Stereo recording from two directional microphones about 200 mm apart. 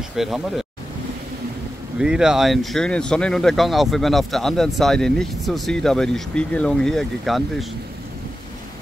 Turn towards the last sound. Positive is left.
turn(degrees=0)  # may be behind; listen again after turning